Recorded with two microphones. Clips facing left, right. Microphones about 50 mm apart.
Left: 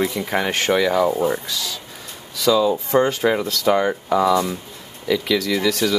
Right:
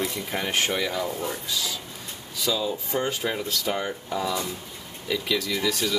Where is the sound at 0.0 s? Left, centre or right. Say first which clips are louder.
Left 7 dB; left.